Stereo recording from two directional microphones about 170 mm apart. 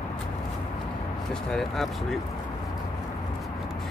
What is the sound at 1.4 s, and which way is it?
Speech, centre (ahead or behind).